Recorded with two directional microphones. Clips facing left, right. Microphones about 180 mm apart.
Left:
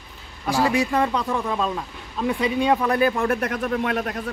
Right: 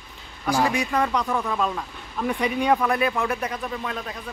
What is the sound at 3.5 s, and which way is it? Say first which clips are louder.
Speech: left 7 dB; 75° left (ahead or behind).